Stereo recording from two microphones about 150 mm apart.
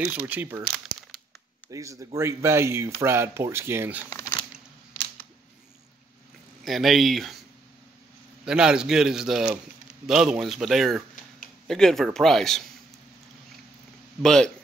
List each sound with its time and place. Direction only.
0.0 s speech: 10° right (ahead or behind)
1.7 s speech: 20° right (ahead or behind)
4.1 s a sound: 20° left (ahead or behind)
6.6 s a man's voice: centre (ahead or behind)
8.5 s a man's voice: 5° right (ahead or behind)
14.2 s a man's voice: 5° left (ahead or behind)